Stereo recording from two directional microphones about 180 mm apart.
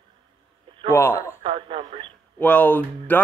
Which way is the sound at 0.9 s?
15° left (ahead or behind).